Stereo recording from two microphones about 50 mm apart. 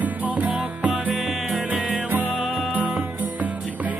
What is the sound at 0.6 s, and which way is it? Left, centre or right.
Music, centre.